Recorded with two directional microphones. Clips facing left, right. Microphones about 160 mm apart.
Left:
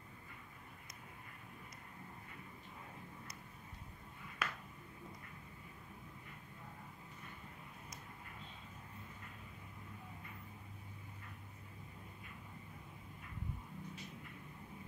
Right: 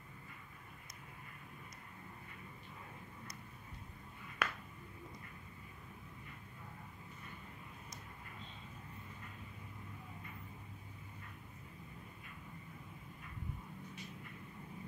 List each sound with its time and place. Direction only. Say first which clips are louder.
4.4 s finger snapping: right 3 dB; 65° right (ahead or behind)